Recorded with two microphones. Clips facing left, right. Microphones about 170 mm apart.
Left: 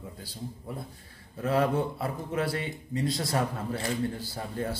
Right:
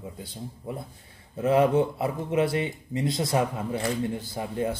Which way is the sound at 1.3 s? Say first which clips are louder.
Right 5 dB; 20° right (ahead or behind).